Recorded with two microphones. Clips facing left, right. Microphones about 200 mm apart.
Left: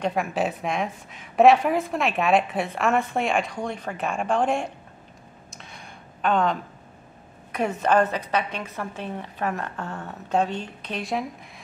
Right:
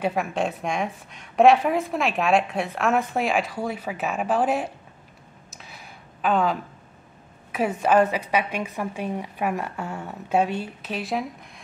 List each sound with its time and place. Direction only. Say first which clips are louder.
0.0 s a woman's voice: even; centre (ahead or behind)
5.5 s a sound: even; 5° right (ahead or behind)
7.5 s a woman's voice: right 1 dB; 5° right (ahead or behind)